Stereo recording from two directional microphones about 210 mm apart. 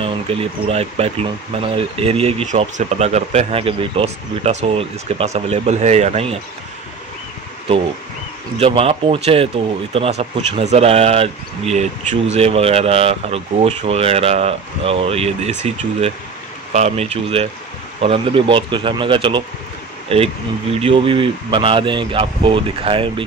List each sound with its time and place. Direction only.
0.0 s speech: 30° right (ahead or behind)
8.5 s speech: 25° right (ahead or behind)